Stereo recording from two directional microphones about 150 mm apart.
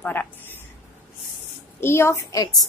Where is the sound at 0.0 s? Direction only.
10° left (ahead or behind).